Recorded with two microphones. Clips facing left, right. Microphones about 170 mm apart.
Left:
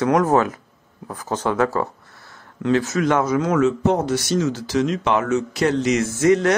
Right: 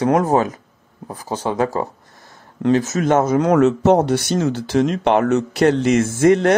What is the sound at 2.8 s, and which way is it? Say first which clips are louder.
Speech: right 3 dB; 45° right (ahead or behind).